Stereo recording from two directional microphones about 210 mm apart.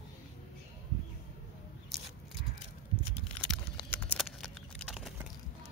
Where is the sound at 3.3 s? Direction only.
Centre (ahead or behind).